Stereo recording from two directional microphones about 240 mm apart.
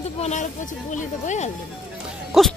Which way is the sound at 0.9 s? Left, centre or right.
Left.